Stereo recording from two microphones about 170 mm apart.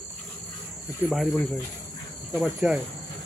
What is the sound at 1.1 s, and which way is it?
Speech, centre (ahead or behind).